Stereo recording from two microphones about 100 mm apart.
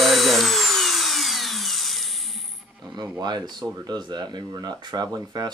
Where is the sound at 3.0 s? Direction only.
45° right (ahead or behind).